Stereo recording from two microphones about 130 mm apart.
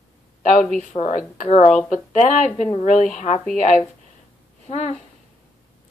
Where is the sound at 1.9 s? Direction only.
70° left (ahead or behind).